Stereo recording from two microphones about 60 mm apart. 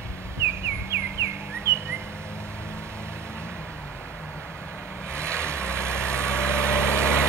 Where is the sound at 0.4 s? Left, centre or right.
Right.